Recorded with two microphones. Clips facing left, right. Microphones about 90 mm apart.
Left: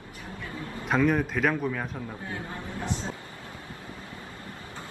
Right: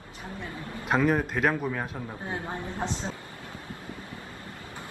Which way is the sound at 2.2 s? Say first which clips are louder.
Right 3 dB; 25° right (ahead or behind).